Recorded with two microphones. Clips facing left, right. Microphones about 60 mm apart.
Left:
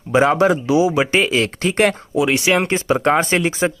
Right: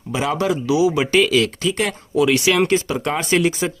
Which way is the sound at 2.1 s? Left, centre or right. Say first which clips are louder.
Right 5 dB; left.